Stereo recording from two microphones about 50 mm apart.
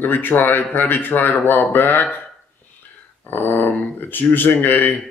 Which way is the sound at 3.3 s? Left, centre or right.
Left.